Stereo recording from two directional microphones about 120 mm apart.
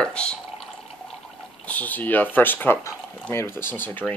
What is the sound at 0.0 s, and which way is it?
Drip, 10° left (ahead or behind).